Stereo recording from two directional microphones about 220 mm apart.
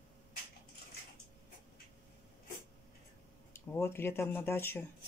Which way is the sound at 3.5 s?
10° left (ahead or behind).